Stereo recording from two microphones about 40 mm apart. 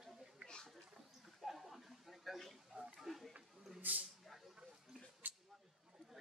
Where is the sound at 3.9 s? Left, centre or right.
Right.